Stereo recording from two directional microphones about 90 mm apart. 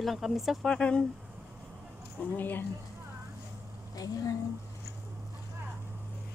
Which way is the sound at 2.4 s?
20° left (ahead or behind).